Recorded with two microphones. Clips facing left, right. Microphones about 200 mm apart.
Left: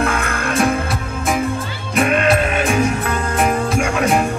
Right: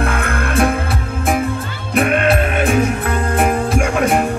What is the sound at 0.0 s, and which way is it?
Music, 55° right (ahead or behind).